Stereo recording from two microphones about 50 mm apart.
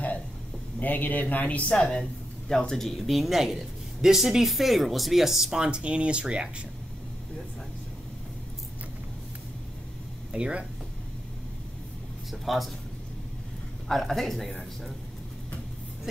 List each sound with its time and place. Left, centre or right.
0.7 s speech: left
1.7 s speech: centre
3.1 s speech: centre; by 6.5 s right
10.3 s speech: centre
12.3 s a man's voice: centre
13.8 s speech: centre